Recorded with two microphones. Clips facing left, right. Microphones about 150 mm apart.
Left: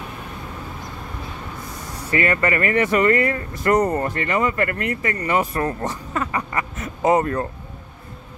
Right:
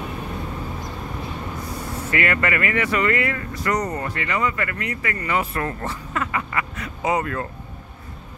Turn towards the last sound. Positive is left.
turn(degrees=45)  # may be behind; listen again after turning